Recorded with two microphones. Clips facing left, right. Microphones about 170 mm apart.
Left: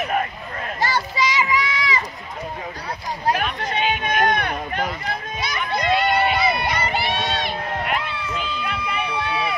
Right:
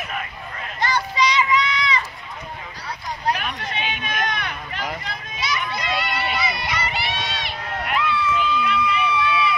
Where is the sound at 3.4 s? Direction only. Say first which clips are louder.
Left 5 dB; 50° left (ahead or behind).